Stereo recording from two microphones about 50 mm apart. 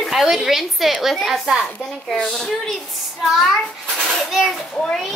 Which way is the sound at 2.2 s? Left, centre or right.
Centre.